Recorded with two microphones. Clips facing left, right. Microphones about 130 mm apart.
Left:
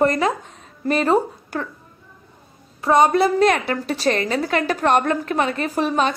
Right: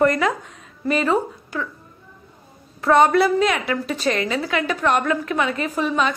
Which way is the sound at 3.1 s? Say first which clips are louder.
Left 1 dB; 40° left (ahead or behind).